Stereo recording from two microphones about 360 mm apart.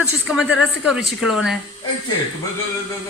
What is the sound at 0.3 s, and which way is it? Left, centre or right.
Speech, centre.